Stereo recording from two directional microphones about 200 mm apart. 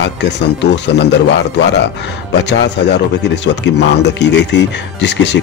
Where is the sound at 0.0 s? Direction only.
60° left (ahead or behind).